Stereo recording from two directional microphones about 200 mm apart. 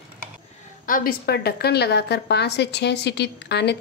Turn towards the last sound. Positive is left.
turn(degrees=55)  # may be behind; listen again after turning